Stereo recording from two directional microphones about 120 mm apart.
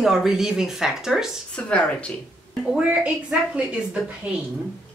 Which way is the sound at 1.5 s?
10° left (ahead or behind).